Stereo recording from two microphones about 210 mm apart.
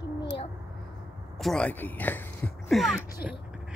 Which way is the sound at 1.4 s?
5° left (ahead or behind).